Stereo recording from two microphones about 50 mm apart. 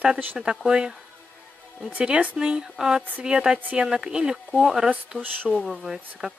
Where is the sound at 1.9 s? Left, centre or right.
Right.